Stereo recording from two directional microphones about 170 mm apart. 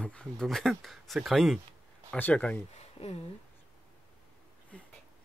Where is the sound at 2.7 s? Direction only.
35° left (ahead or behind).